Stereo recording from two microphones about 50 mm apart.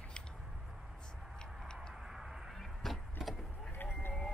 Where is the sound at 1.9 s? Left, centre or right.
Centre.